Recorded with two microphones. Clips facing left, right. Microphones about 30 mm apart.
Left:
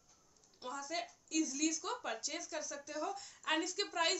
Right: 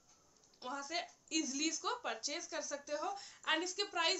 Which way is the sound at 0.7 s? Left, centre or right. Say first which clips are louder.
Even; right.